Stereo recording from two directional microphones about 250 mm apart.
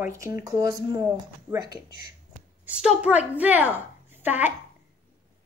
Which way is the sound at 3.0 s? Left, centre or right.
Centre.